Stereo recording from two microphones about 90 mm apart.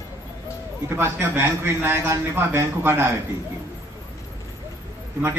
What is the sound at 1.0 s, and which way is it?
A man's voice, 25° right (ahead or behind).